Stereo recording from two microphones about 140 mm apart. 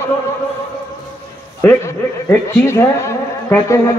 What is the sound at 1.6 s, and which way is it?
Speech, 15° left (ahead or behind).